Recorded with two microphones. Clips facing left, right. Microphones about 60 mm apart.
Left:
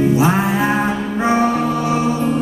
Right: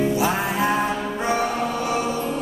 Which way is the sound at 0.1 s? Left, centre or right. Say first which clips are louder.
Left 6 dB; left.